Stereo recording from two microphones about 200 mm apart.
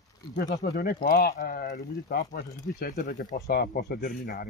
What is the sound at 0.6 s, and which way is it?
Speech, 50° left (ahead or behind).